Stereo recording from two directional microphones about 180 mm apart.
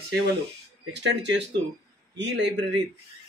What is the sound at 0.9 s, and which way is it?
Speech, 75° right (ahead or behind).